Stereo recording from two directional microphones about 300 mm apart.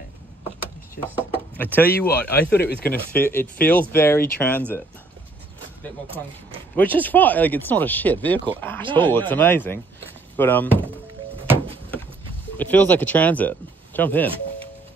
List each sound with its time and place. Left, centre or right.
1.6 s speech: centre
2.5 s speech: left
3.1 s speech: centre
6.7 s speech: centre
12.5 s speech: centre